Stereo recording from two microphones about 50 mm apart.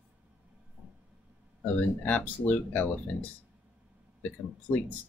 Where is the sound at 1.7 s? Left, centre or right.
Left.